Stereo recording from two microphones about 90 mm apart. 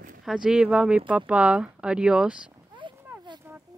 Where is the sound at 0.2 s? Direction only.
5° right (ahead or behind).